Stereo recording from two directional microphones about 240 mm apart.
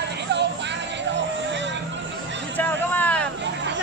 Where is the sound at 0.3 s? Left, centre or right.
Right.